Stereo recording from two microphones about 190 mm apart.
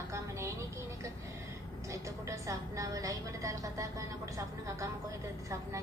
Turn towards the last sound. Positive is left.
turn(degrees=-15)  # may be behind; listen again after turning